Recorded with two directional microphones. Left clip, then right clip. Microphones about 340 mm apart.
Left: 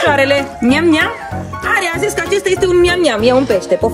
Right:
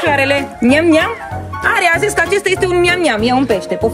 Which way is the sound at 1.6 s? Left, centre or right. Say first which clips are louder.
Right 3 dB; centre.